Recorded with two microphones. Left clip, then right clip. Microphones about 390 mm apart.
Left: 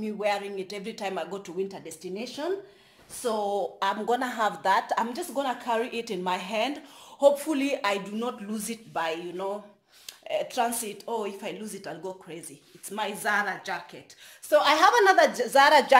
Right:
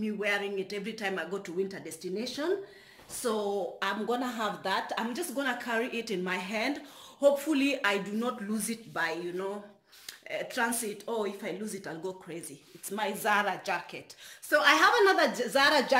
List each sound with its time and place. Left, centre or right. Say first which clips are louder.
0.0 s a woman's voice: left 3 dB; centre
4.1 s a woman's voice: left 5 dB; centre
14.5 s a woman's voice: left 3 dB; centre